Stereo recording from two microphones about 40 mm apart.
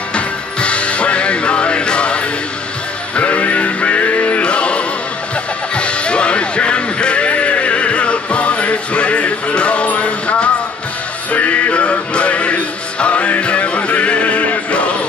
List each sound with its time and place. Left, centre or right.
0.1 s music: left